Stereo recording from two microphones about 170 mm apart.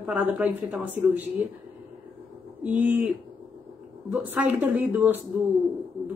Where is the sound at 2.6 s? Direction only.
10° right (ahead or behind).